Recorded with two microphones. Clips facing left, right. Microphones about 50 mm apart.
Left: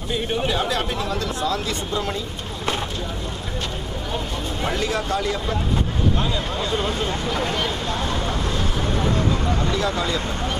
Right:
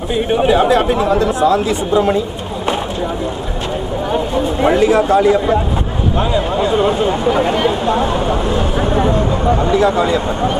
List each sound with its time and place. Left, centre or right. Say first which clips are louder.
0.1 s speech: right 10 dB; centre
4.1 s speech: right 11 dB; right